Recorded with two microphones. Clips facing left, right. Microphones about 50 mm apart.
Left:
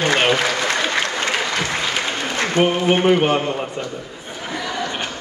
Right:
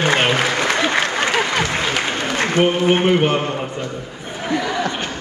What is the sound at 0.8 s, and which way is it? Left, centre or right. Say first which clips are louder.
Applause: right 3 dB; right.